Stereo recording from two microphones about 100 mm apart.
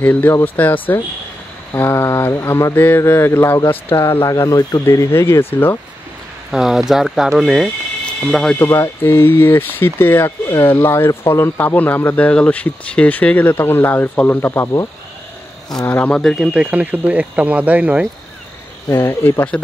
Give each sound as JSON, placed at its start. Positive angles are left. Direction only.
{"t": 0.0, "sound": "speech", "side_deg": 15}
{"t": 6.5, "sound": "speech", "side_deg": -5}
{"t": 8.5, "sound": "speech", "side_deg": 30}
{"t": 15.9, "sound": "speech", "side_deg": 10}
{"t": 16.5, "sound": "speech", "side_deg": -15}
{"t": 18.9, "sound": "speech", "side_deg": 25}